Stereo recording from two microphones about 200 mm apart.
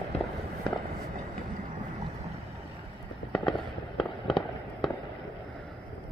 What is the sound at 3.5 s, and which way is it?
Fireworks, centre (ahead or behind).